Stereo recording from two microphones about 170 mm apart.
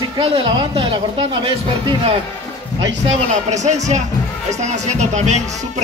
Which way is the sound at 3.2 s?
40° right (ahead or behind).